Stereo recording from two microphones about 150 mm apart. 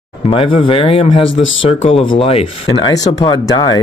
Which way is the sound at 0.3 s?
35° left (ahead or behind).